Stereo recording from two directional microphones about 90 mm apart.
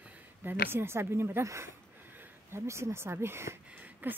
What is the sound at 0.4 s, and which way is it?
Speech, 25° right (ahead or behind).